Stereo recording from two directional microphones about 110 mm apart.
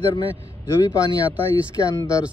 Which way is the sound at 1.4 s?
25° left (ahead or behind).